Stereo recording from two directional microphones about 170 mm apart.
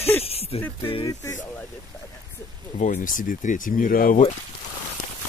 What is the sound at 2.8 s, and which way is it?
Speech, 50° left (ahead or behind).